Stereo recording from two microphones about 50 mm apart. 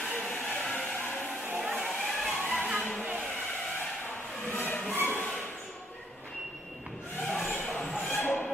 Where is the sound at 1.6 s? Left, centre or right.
Centre.